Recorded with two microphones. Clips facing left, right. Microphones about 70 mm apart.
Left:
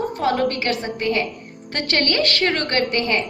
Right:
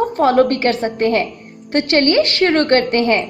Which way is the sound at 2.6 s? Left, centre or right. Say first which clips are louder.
Right 7 dB; right.